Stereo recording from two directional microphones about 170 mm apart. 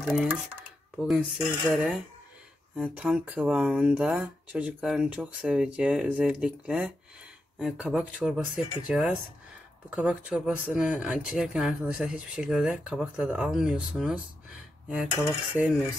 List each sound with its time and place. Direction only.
0.0 s speech: centre (ahead or behind)